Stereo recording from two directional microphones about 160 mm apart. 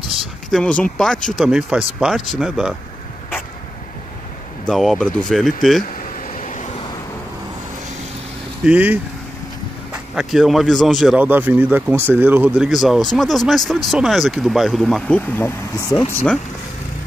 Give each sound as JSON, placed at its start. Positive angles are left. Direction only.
{"t": 0.5, "sound": "speech", "side_deg": 5}
{"t": 4.6, "sound": "speech", "side_deg": 0}
{"t": 5.9, "sound": "a sound", "side_deg": 50}
{"t": 8.6, "sound": "speech", "side_deg": -10}
{"t": 10.1, "sound": "speech", "side_deg": 0}
{"t": 11.1, "sound": "speech", "side_deg": -10}